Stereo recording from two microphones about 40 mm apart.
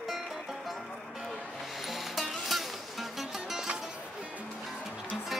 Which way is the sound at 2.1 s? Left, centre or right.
Centre.